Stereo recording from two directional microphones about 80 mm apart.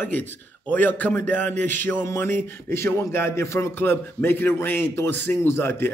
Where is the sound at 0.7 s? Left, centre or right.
Left.